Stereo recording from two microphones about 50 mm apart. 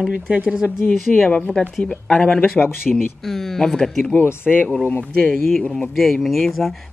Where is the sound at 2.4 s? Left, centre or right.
Left.